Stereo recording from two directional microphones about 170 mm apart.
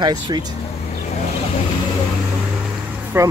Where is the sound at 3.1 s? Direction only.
15° right (ahead or behind).